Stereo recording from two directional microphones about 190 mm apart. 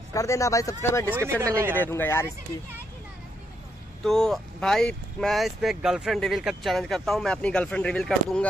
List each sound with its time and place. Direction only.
0.1 s speech: 15° left (ahead or behind)
1.1 s speech: 15° right (ahead or behind)
1.8 s speech: 10° left (ahead or behind)
4.0 s speech: centre (ahead or behind)